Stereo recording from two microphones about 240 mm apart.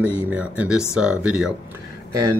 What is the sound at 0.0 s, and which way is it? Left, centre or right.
Speech, centre.